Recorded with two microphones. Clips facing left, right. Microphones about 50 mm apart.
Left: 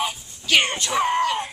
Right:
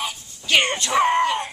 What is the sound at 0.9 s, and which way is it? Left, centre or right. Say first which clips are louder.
Chicken: right 3 dB; centre.